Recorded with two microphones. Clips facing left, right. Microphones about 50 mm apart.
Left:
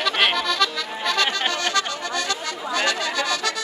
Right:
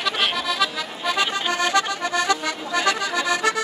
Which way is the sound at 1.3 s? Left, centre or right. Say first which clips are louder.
Even; left.